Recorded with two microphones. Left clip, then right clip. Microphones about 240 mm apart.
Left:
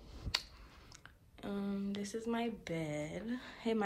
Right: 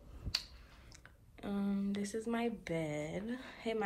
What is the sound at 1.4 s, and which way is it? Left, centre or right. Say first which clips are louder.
A woman's voice: right 1 dB; centre.